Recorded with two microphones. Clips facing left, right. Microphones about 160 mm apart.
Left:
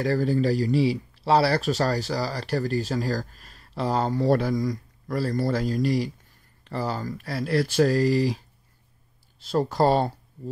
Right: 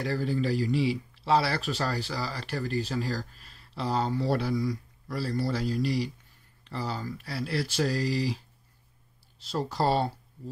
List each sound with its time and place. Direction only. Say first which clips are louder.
0.0 s speech: left 6 dB; 45° left (ahead or behind)
9.4 s speech: left 7 dB; 50° left (ahead or behind)